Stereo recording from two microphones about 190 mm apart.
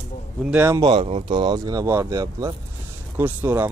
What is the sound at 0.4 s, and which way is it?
Speech, 10° right (ahead or behind).